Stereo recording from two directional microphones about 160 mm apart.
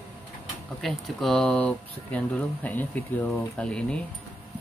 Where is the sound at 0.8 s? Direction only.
Centre (ahead or behind).